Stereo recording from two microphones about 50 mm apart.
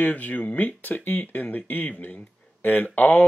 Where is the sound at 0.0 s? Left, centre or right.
Left.